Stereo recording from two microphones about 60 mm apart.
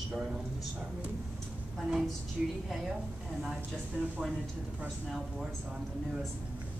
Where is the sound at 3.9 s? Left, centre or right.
Right.